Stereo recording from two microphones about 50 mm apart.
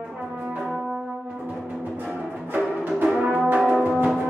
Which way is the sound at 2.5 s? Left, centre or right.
Right.